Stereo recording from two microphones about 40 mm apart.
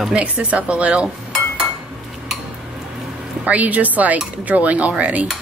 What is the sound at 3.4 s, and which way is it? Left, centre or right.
A woman's voice, right.